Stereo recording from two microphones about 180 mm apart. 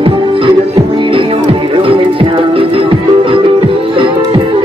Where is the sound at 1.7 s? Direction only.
30° right (ahead or behind).